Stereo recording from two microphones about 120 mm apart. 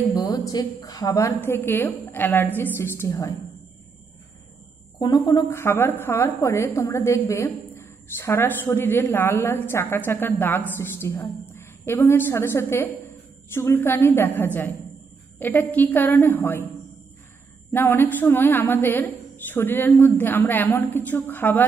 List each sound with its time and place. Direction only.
0.1 s a sound: 35° left (ahead or behind)
0.8 s a woman's voice: 35° left (ahead or behind)
1.4 s a woman's voice: 15° left (ahead or behind)
4.9 s a woman's voice: 35° left (ahead or behind); by 16.6 s 15° left (ahead or behind)
17.7 s a woman's voice: 20° left (ahead or behind)